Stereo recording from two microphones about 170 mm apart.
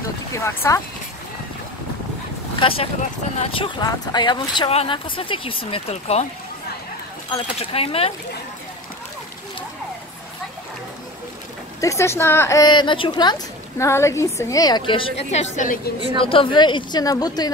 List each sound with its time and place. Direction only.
0.3 s speech: 15° left (ahead or behind)
2.6 s speech: 35° left (ahead or behind)
7.2 s speech: 30° left (ahead or behind)
11.8 s a woman's voice: 15° left (ahead or behind)
15.5 s a woman's voice: 50° left (ahead or behind)
16.2 s a woman's voice: 30° left (ahead or behind)